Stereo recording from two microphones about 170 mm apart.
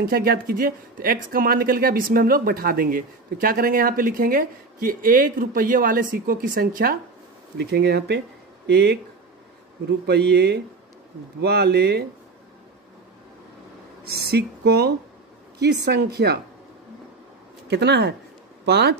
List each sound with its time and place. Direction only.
0.1 s speech: 60° right (ahead or behind)
7.5 s speech: 70° right (ahead or behind)
10.0 s speech: 70° right (ahead or behind)
14.0 s speech: 65° right (ahead or behind)
17.6 s speech: 80° right